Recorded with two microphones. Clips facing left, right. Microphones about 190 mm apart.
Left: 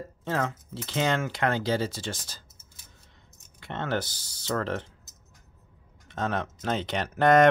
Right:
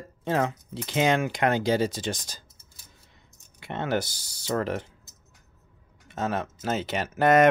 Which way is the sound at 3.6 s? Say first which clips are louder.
Right 2 dB; 10° right (ahead or behind).